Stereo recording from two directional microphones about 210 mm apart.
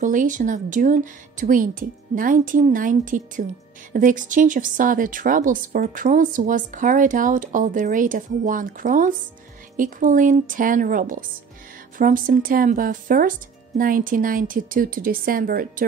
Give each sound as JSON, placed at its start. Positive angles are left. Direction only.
{"t": 0.0, "sound": "speech", "side_deg": -40}